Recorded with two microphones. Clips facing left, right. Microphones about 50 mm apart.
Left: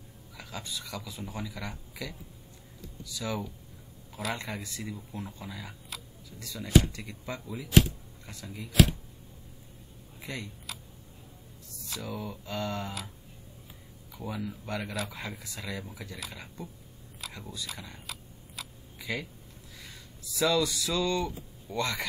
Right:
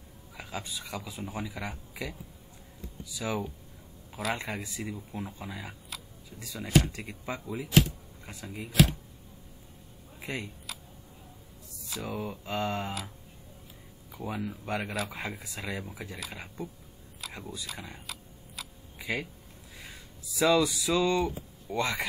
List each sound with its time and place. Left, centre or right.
0.3 s a sound: centre
0.8 s speech: centre
10.2 s speech: right
12.0 s speech: right
14.1 s speech: right
17.3 s speech: centre
18.0 s a sound: centre
18.9 s a sound: right
19.7 s speech: right